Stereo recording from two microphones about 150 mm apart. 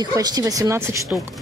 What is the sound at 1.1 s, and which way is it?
Speech, 10° right (ahead or behind).